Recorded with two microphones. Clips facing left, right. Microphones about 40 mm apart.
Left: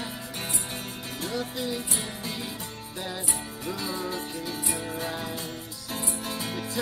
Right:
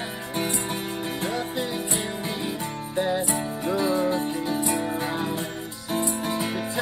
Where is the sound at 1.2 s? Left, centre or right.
Right.